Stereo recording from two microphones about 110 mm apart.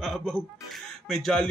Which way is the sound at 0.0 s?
Centre (ahead or behind).